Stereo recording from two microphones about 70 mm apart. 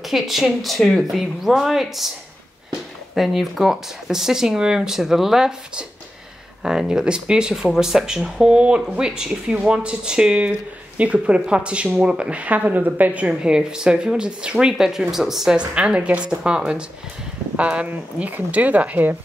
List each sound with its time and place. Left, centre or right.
0.0 s speech: centre
3.2 s speech: centre; by 19.1 s right